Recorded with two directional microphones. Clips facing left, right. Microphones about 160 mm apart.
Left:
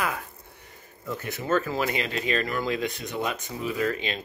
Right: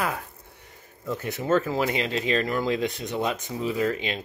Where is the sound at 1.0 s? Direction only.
20° right (ahead or behind).